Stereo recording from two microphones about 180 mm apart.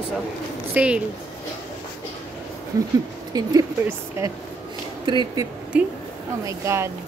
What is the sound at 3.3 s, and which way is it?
Speech, 20° right (ahead or behind).